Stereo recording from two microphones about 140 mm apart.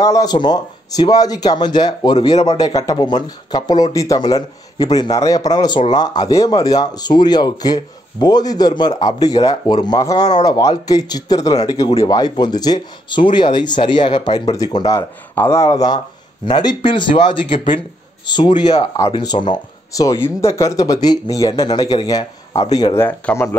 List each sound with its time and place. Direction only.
0.0 s speech: 25° left (ahead or behind)
2.3 s a man's voice: 55° left (ahead or behind)
2.6 s speech: 25° left (ahead or behind)
22.9 s speech: 15° left (ahead or behind)